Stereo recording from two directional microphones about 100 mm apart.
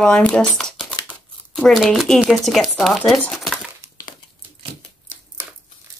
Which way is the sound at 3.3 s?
Centre (ahead or behind).